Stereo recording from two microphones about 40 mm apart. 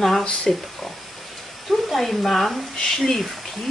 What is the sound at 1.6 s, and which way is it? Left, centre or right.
Speech, centre.